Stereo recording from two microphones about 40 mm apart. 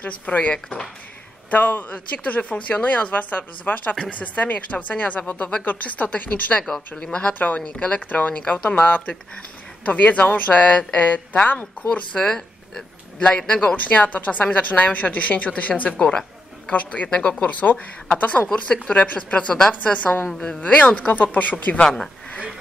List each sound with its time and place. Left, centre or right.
0.0 s a woman's voice: left
1.5 s a woman's voice: left
7.0 s speech: left
7.3 s speech: left
7.6 s speech: left
8.1 s a woman's voice: left
11.9 s speech: left
13.5 s speech: left
13.8 s a woman's voice: left
17.4 s a woman's voice: left
18.5 s a woman's voice: left
21.8 s speech: centre